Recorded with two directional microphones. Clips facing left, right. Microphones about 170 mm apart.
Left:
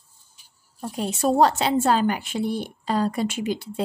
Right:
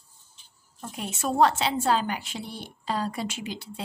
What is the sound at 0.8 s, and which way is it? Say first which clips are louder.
A woman's voice: left 8 dB; 35° left (ahead or behind).